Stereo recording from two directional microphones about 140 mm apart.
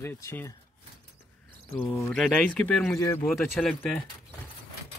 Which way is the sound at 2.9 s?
20° left (ahead or behind).